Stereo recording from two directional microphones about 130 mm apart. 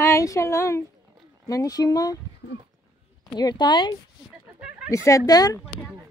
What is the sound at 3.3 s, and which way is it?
Speech, 30° left (ahead or behind).